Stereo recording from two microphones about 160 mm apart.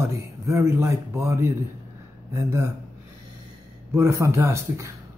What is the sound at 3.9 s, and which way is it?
Speech, 15° right (ahead or behind).